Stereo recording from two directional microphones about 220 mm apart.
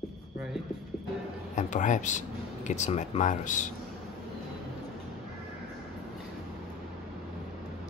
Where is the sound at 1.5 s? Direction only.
35° left (ahead or behind).